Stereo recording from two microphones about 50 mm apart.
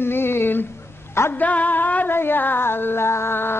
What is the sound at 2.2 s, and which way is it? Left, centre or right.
Music, left.